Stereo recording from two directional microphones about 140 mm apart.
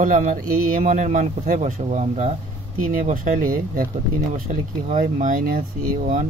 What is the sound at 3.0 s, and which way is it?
Speech, 70° right (ahead or behind).